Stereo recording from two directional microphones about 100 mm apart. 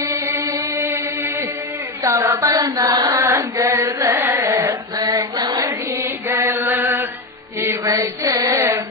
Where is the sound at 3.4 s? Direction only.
30° right (ahead or behind).